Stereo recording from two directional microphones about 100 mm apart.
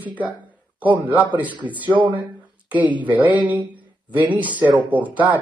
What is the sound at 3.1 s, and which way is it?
A man's voice, 15° right (ahead or behind).